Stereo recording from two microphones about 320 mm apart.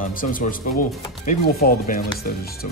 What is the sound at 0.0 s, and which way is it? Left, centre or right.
Speech, left.